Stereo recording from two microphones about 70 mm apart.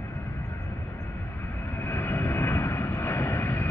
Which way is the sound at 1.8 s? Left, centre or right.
Left.